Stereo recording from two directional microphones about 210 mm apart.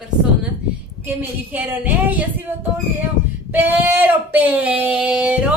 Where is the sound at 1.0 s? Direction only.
10° right (ahead or behind).